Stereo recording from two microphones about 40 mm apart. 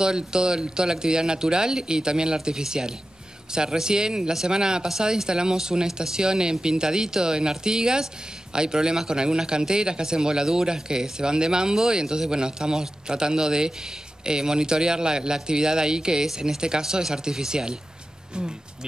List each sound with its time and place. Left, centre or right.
0.0 s a man's voice: centre